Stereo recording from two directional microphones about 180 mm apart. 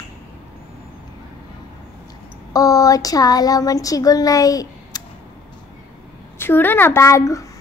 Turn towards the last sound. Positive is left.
turn(degrees=15)  # may be behind; listen again after turning